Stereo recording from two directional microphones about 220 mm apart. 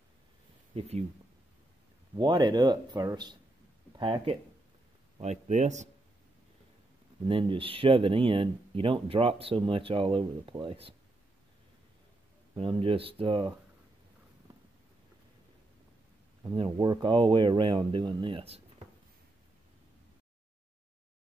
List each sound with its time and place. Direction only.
0.7 s speech: 30° right (ahead or behind)
2.1 s speech: 20° right (ahead or behind)
7.2 s speech: 25° right (ahead or behind)
12.5 s speech: 25° right (ahead or behind)
16.4 s speech: 20° right (ahead or behind)